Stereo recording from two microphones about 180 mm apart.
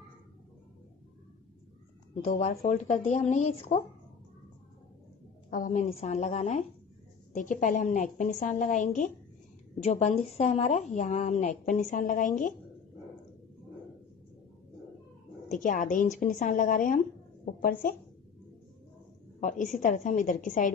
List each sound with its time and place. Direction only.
2.2 s a woman's voice: 35° left (ahead or behind)
5.5 s a woman's voice: 45° left (ahead or behind)
15.4 s a woman's voice: 45° left (ahead or behind)
19.4 s a woman's voice: 45° left (ahead or behind)